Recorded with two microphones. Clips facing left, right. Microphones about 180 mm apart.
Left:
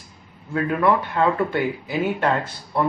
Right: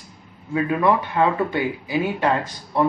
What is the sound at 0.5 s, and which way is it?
Speech, 15° right (ahead or behind).